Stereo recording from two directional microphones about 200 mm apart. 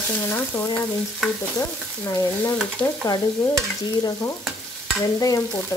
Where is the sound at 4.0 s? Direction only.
20° left (ahead or behind).